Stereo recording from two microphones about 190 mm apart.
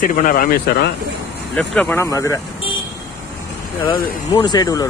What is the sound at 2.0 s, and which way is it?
Speech, 15° left (ahead or behind).